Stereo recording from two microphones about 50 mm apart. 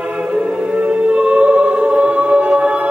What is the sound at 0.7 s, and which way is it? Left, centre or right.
Music, right.